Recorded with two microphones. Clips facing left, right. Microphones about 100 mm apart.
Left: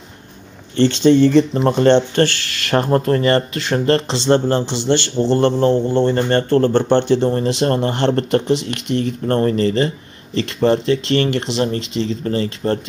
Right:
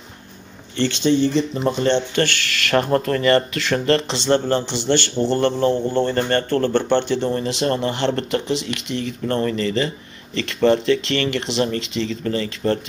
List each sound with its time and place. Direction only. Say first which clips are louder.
0.7 s speech: left 6 dB; 45° left (ahead or behind)
2.0 s speech: left 5 dB; 35° left (ahead or behind)